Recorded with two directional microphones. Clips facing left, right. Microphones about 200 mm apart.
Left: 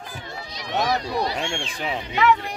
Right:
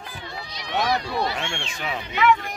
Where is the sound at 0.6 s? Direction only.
40° left (ahead or behind).